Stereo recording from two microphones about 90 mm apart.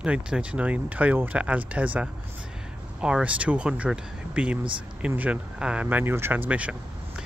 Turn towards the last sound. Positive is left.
turn(degrees=-15)  # may be behind; listen again after turning